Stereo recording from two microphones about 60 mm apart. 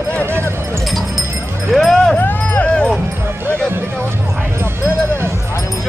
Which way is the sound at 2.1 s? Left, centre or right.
Left.